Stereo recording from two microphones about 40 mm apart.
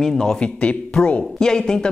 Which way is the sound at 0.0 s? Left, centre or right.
Centre.